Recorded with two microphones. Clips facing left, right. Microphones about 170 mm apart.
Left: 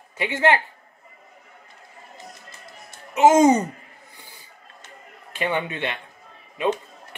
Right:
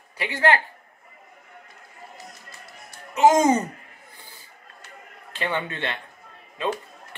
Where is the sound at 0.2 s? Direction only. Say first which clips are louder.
Left 2 dB; 20° left (ahead or behind).